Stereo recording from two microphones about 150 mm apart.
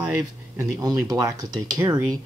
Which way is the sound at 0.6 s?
25° right (ahead or behind).